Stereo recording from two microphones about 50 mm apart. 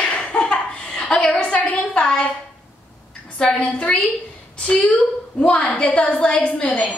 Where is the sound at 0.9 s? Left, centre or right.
Centre.